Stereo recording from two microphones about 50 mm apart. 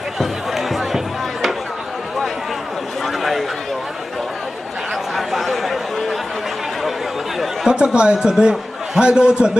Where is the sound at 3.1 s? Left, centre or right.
Centre.